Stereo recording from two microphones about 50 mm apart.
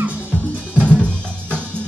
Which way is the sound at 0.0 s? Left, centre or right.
Right.